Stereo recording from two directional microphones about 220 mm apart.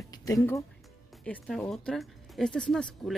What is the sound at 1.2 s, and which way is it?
Speech, 5° left (ahead or behind).